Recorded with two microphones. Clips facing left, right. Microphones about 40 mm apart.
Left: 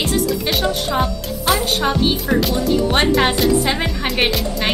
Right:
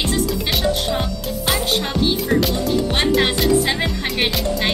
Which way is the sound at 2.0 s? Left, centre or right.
Centre.